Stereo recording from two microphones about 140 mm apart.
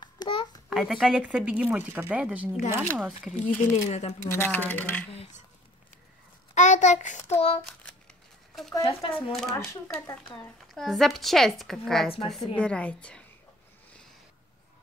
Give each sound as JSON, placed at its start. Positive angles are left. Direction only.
{"t": 0.0, "sound": "babbling", "side_deg": 35}
{"t": 0.7, "sound": "speech", "side_deg": 0}
{"t": 2.8, "sound": "speech", "side_deg": 5}
{"t": 3.7, "sound": "speech", "side_deg": 50}
{"t": 4.3, "sound": "a woman's voice", "side_deg": 15}
{"t": 5.1, "sound": "speech", "side_deg": 45}
{"t": 6.5, "sound": "child singing", "side_deg": 60}
{"t": 9.1, "sound": "speech", "side_deg": 5}
{"t": 9.7, "sound": "speech", "side_deg": 20}
{"t": 10.7, "sound": "a woman's voice", "side_deg": 0}